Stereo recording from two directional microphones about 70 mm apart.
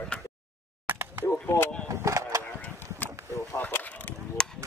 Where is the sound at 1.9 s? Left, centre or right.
Right.